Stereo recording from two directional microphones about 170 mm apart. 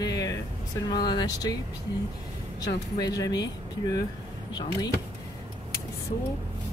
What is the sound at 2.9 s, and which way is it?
Speech, 20° left (ahead or behind).